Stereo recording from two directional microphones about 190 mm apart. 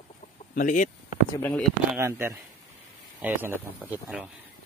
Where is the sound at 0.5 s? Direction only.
45° left (ahead or behind).